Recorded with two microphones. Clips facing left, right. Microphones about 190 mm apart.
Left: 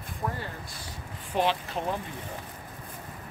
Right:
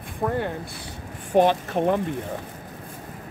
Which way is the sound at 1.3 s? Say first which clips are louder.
Right 9 dB; 50° right (ahead or behind).